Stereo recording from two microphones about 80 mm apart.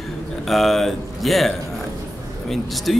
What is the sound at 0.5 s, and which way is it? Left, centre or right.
A man's voice, centre.